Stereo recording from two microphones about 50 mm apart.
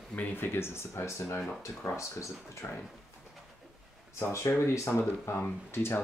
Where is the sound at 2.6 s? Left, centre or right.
Left.